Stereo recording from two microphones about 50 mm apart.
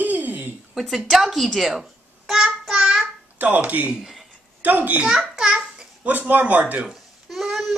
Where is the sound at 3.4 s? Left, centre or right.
Right.